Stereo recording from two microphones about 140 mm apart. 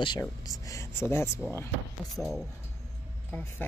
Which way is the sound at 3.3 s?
15° left (ahead or behind).